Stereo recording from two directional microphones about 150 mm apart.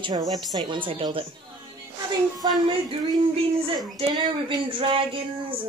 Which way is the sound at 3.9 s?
35° right (ahead or behind).